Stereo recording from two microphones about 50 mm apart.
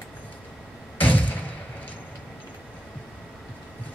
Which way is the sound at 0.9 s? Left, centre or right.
Left.